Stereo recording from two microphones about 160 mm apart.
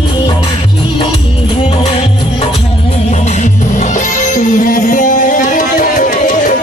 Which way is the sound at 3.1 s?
45° left (ahead or behind).